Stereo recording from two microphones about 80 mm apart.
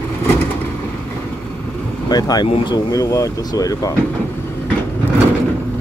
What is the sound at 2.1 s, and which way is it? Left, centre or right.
Speech, left.